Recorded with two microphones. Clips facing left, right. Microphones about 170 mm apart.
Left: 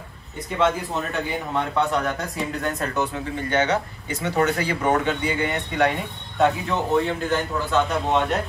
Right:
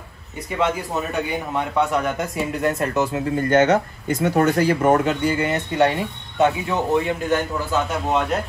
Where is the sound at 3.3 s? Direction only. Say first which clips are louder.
Right 6 dB; 45° right (ahead or behind).